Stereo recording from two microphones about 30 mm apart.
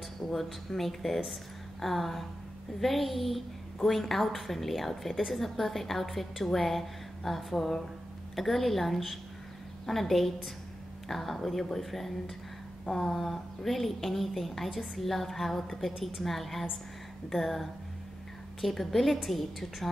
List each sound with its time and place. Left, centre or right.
0.2 s a woman's voice: centre